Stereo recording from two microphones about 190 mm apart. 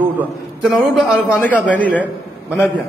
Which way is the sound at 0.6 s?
5° right (ahead or behind).